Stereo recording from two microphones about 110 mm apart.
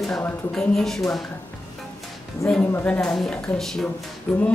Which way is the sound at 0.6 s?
5° left (ahead or behind).